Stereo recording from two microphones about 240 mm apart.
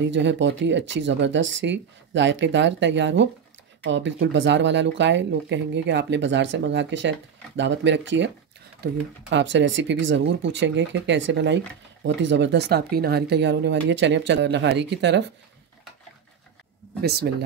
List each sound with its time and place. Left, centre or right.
0.0 s speech: right
17.0 s speech: right